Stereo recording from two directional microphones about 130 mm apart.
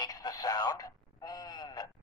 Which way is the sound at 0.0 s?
30° left (ahead or behind).